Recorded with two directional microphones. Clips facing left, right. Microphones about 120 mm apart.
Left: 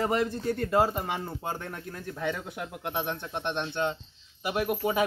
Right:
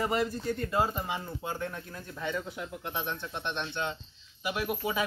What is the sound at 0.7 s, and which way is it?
Speech, 55° left (ahead or behind).